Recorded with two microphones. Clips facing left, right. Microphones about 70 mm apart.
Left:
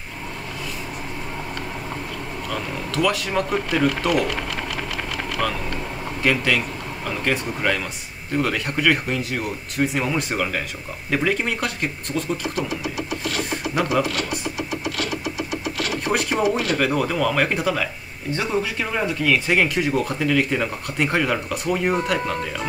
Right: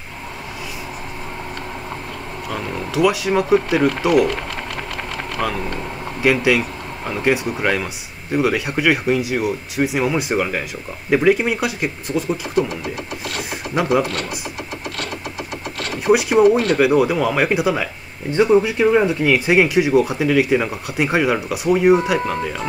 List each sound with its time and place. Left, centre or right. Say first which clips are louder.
2.5 s speech: right 4 dB; centre
5.4 s speech: right 3 dB; centre
15.0 s sewing machine: left 2 dB; right
16.1 s speech: right 9 dB; centre